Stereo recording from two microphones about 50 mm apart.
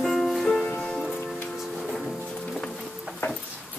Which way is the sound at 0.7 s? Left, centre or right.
Centre.